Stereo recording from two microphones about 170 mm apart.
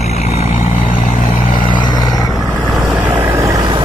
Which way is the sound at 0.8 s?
55° left (ahead or behind).